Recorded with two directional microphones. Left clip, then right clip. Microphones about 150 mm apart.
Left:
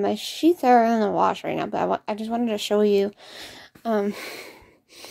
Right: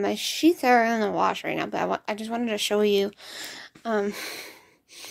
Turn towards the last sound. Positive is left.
turn(degrees=50)  # may be behind; listen again after turning